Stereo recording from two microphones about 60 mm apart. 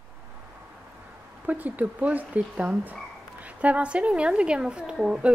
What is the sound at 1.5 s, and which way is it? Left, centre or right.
A woman's voice, right.